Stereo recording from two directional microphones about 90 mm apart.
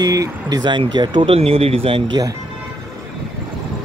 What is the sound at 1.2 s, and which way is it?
Speech, 90° right.